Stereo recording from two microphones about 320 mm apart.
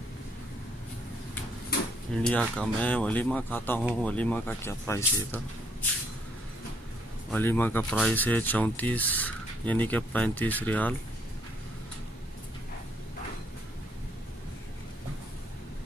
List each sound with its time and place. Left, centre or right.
2.2 s speech: centre
7.2 s speech: centre